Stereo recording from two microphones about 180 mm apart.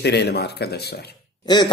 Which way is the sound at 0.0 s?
65° left (ahead or behind).